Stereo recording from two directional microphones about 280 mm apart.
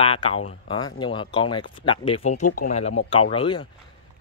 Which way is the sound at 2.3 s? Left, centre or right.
Left.